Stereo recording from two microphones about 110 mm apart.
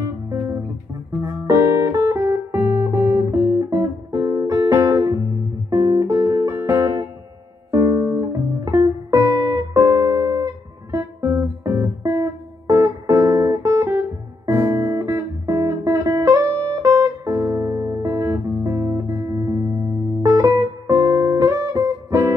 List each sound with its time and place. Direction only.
0.3 s music: 25° right (ahead or behind)